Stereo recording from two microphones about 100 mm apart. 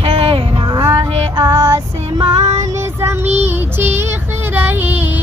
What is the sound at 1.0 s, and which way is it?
Music, 70° right (ahead or behind).